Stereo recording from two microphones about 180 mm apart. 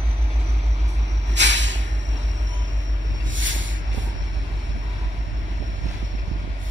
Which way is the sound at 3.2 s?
90° right.